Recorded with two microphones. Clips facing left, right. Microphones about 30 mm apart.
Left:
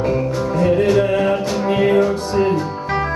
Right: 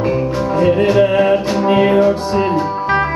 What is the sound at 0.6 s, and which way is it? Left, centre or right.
Music, centre.